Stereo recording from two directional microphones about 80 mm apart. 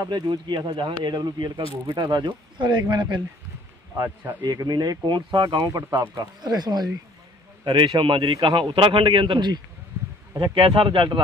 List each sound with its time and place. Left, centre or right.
0.1 s speech: right
1.0 s speech: right
4.4 s speech: right
7.6 s a man's voice: right